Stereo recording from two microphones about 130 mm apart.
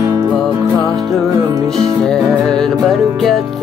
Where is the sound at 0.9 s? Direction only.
Centre (ahead or behind).